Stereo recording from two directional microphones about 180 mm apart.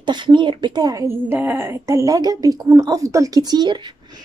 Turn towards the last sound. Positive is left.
turn(degrees=-25)  # may be behind; listen again after turning